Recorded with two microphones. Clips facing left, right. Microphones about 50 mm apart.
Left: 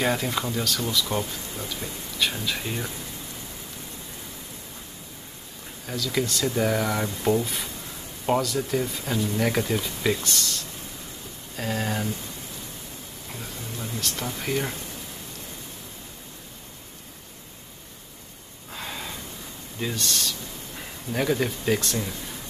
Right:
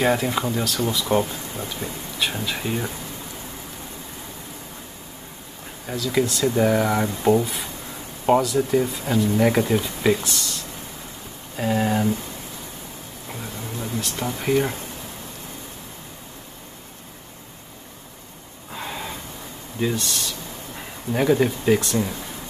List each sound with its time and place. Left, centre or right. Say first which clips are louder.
0.0 s speech: right 4 dB; centre
5.9 s speech: right 5 dB; centre
13.3 s a sound: right 4 dB; centre
14.0 s speech: right 5 dB; centre
18.7 s a sound: right 4 dB; centre
19.8 s speech: right 4 dB; centre